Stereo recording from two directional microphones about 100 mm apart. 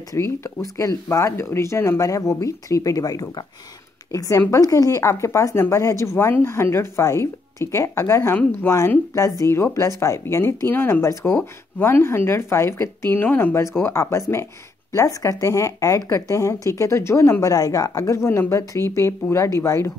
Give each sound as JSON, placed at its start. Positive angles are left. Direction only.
{"t": 0.1, "sound": "a woman's voice", "side_deg": 30}